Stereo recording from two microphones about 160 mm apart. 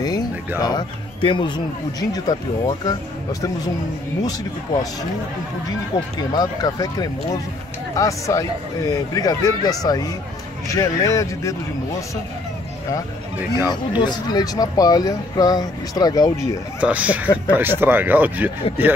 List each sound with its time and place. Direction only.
0.6 s speech: 25° left (ahead or behind)
13.7 s speech: 25° left (ahead or behind)
16.8 s speech: 10° right (ahead or behind)